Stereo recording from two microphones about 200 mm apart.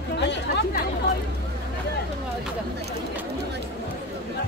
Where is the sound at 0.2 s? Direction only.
60° left (ahead or behind).